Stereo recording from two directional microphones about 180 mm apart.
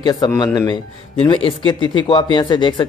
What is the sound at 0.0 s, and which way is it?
Speech, 25° left (ahead or behind).